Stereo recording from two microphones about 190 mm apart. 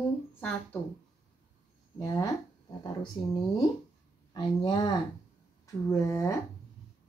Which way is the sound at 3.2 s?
25° left (ahead or behind).